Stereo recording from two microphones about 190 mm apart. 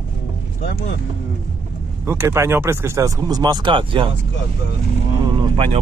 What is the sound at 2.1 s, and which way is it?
Speech, 15° right (ahead or behind).